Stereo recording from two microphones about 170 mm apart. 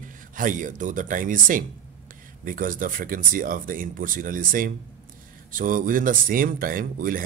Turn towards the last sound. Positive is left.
turn(degrees=-55)  # may be behind; listen again after turning